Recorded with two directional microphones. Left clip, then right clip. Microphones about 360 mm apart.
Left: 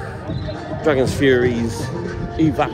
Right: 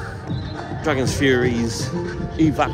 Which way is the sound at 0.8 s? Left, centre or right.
Centre.